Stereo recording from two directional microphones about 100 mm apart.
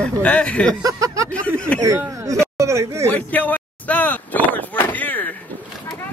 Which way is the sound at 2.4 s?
30° right (ahead or behind).